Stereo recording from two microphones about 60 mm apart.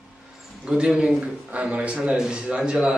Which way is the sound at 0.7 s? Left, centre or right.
Centre.